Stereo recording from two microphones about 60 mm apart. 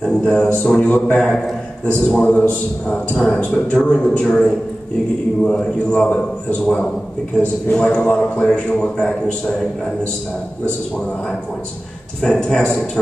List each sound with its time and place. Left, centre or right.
0.0 s a man's voice: centre
12.2 s a man's voice: centre